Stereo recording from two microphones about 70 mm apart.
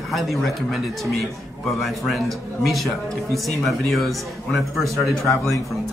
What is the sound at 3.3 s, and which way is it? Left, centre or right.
Speech, centre.